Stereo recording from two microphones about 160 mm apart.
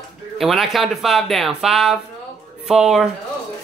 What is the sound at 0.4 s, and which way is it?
Speech, centre (ahead or behind).